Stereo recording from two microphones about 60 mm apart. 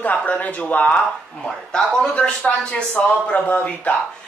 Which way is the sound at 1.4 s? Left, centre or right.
Centre.